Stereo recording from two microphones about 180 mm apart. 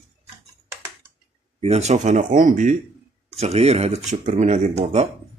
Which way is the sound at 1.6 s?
35° right (ahead or behind).